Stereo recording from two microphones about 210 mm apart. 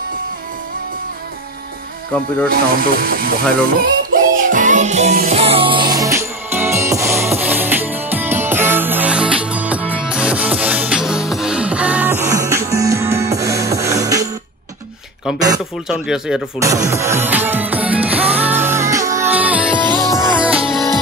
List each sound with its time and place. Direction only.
2.5 s speech: 45° right (ahead or behind)
3.7 s music: 40° right (ahead or behind); by 14.3 s 15° right (ahead or behind)
15.9 s speech: 5° right (ahead or behind)
16.5 s music: 15° right (ahead or behind)
19.9 s music: 20° right (ahead or behind)
20.3 s music: 5° right (ahead or behind)